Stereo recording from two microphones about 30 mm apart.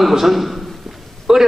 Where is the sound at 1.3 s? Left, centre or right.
Right.